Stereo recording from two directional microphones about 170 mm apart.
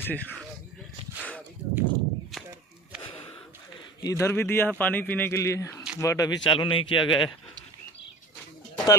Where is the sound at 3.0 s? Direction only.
35° left (ahead or behind).